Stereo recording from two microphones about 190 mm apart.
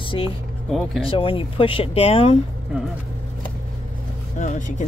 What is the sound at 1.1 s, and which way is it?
Speech, 30° left (ahead or behind).